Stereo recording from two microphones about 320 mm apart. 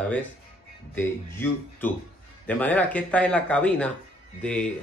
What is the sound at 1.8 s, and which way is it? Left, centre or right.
Speech, centre.